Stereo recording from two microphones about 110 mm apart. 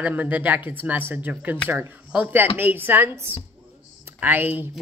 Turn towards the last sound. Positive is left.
turn(degrees=-15)  # may be behind; listen again after turning